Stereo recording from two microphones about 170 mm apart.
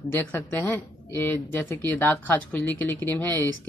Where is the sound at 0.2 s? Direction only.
10° left (ahead or behind).